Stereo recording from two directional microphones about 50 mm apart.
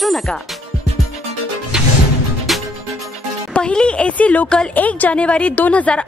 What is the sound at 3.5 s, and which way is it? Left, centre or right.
A woman's voice, left.